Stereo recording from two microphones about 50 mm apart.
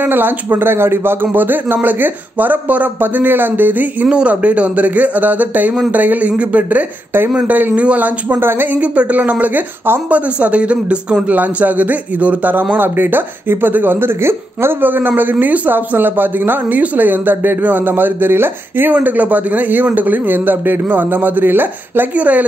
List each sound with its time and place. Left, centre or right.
0.0 s a man's voice: right
4.1 s a man's voice: right
8.7 s a man's voice: right
11.2 s a man's voice: right
12.7 s speech: right
14.8 s a man's voice: right
18.9 s a man's voice: right
22.1 s speech: right